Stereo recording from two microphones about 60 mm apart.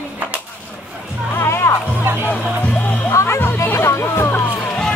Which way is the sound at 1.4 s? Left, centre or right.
Left.